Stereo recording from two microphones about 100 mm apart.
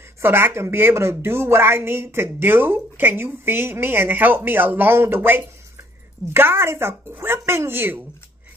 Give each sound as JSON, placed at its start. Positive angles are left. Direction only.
{"t": 0.2, "sound": "a woman's voice", "side_deg": -25}